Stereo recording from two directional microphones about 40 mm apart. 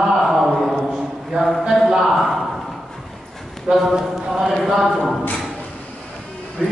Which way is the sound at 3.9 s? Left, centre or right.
Centre.